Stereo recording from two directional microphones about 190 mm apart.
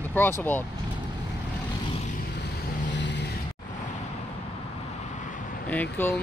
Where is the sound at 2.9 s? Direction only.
65° left (ahead or behind).